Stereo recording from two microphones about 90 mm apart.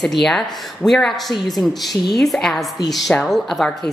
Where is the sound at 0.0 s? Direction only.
5° left (ahead or behind).